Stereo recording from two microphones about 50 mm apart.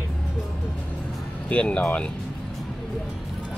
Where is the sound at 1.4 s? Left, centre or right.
Left.